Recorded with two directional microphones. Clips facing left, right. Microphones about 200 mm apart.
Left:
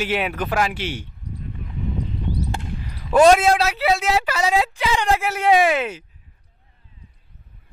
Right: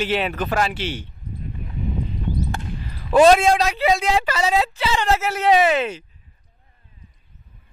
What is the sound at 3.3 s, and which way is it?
Speech, 5° left (ahead or behind).